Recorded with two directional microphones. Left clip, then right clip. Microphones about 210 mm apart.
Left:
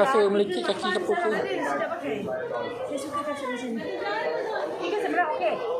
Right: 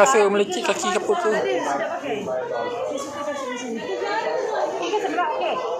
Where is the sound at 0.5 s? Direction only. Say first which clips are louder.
Right 4 dB; 15° right (ahead or behind).